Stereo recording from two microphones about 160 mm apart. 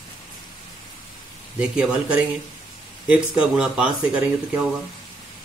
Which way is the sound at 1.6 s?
5° right (ahead or behind).